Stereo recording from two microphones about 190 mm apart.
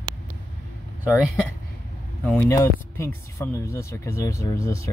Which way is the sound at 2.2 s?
10° left (ahead or behind).